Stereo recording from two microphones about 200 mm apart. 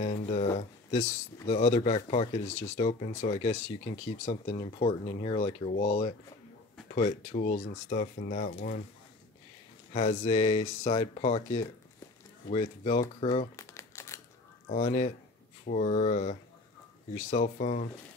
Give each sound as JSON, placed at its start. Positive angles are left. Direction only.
{"t": 0.0, "sound": "speech", "side_deg": 30}
{"t": 9.9, "sound": "speech", "side_deg": 35}
{"t": 13.6, "sound": "crumpling", "side_deg": 15}
{"t": 14.7, "sound": "speech", "side_deg": 35}